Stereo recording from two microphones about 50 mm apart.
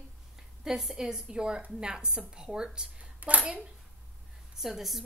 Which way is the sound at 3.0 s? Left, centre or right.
Right.